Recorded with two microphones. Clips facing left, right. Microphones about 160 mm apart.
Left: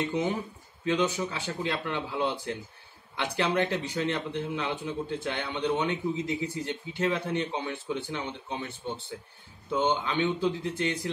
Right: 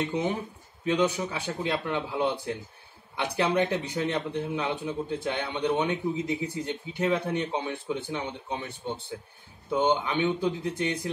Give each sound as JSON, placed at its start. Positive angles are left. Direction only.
{"t": 0.8, "sound": "a man's voice", "side_deg": -15}